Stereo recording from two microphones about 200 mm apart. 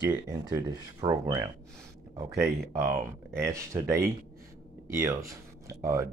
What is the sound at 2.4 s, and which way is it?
Speech, 15° right (ahead or behind).